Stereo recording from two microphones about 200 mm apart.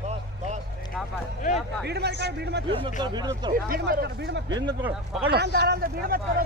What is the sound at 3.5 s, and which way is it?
Speech, 45° right (ahead or behind).